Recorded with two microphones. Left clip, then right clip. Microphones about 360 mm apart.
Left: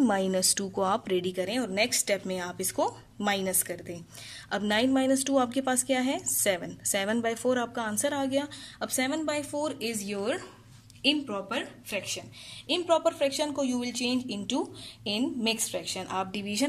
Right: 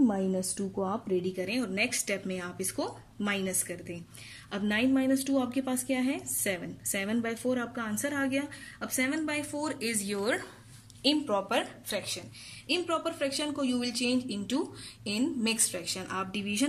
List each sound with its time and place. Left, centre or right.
0.0 s a woman's voice: left
1.0 s a woman's voice: left
3.6 s a woman's voice: left
4.6 s a woman's voice: centre
12.6 s a woman's voice: centre